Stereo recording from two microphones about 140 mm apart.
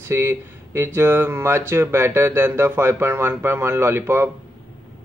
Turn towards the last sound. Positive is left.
turn(degrees=-15)  # may be behind; listen again after turning